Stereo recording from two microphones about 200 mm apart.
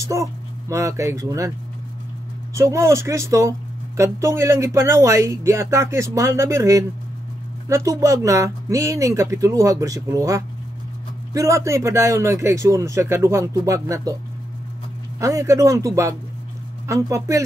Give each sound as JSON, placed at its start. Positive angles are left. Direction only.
{"t": 0.0, "sound": "speech", "side_deg": -15}
{"t": 2.5, "sound": "speech", "side_deg": -15}
{"t": 15.1, "sound": "speech", "side_deg": -15}